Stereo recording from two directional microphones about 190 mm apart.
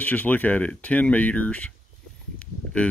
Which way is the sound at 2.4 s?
5° left (ahead or behind).